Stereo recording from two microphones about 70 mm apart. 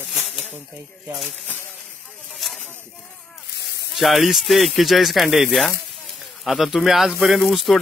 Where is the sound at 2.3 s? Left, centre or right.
Centre.